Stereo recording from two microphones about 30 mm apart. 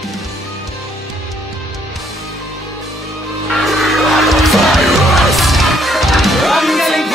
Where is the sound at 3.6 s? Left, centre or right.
Centre.